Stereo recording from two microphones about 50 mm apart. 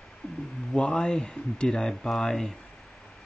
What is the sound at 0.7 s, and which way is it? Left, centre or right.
Speech, centre.